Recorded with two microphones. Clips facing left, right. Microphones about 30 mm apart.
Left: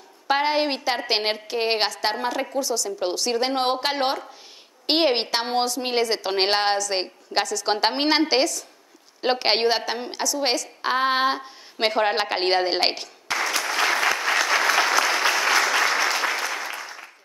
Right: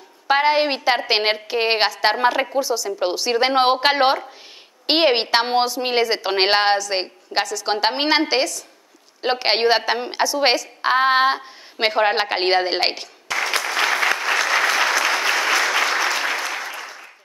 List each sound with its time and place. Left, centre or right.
0.3 s a woman's voice: centre
10.6 s a woman's voice: centre
13.9 s applause: centre